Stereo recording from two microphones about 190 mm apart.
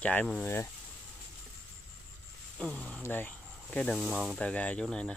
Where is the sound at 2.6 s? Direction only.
5° left (ahead or behind).